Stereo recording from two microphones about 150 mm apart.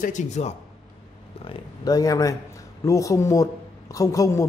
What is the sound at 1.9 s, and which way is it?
A man's voice, 25° left (ahead or behind).